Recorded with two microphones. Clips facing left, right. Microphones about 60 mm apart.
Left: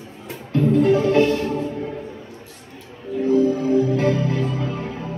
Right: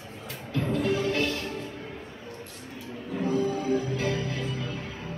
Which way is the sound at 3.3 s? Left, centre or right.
Left.